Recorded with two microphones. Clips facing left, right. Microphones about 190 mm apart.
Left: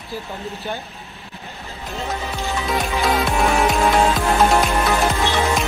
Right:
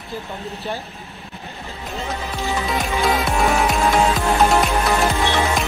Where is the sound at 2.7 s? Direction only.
Centre (ahead or behind).